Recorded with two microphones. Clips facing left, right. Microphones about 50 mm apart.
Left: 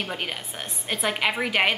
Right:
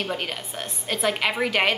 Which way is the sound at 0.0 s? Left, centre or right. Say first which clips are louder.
Right 2 dB; centre.